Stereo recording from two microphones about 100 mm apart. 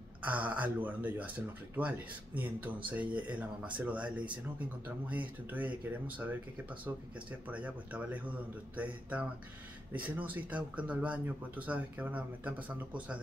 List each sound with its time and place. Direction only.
0.2 s speech: 15° right (ahead or behind)
7.4 s speech: 15° right (ahead or behind)